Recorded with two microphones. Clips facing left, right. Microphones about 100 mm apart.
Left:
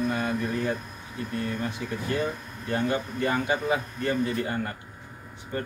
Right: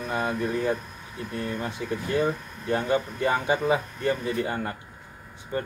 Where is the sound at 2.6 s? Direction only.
25° right (ahead or behind).